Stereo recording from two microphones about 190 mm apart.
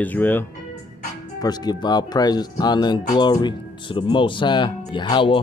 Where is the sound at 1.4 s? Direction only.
20° left (ahead or behind).